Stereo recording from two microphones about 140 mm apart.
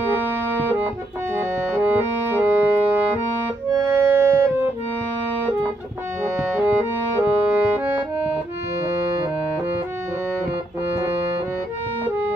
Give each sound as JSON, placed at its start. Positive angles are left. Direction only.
{"t": 0.1, "sound": "organ", "side_deg": -15}
{"t": 1.3, "sound": "music", "side_deg": -10}
{"t": 6.5, "sound": "music", "side_deg": -10}